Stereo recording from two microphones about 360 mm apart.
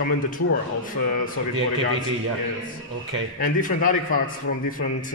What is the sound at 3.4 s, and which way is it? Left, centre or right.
Speech, left.